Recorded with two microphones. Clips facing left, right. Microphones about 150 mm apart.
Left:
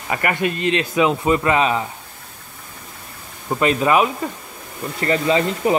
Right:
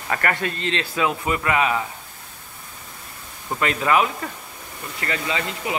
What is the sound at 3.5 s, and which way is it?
Speech, 20° left (ahead or behind).